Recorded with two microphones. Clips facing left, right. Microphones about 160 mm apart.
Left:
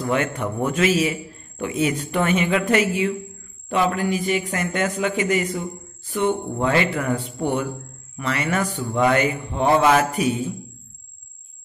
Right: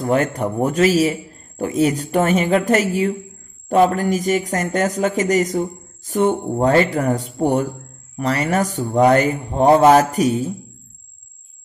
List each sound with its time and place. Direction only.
0.0 s a man's voice: 40° right (ahead or behind)